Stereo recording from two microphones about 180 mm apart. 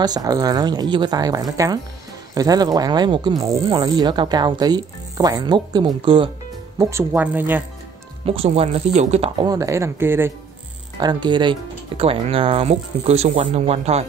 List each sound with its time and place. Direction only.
0.0 s speech: 20° right (ahead or behind)
6.8 s speech: 15° right (ahead or behind)
8.3 s speech: 35° right (ahead or behind)
9.5 s speech: 15° right (ahead or behind)
11.0 s speech: 25° right (ahead or behind)